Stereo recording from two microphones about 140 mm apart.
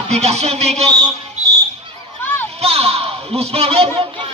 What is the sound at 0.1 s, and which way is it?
Speech, 50° right (ahead or behind).